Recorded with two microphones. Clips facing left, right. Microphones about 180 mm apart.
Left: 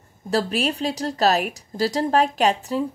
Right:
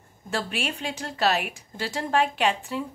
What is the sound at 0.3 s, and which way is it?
A woman's voice, 40° left (ahead or behind).